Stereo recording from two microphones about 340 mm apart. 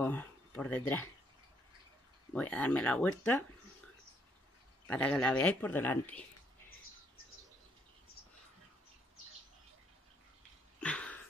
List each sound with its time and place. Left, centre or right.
0.0 s speech: centre
2.3 s speech: centre
4.8 s speech: centre
10.8 s a sound: centre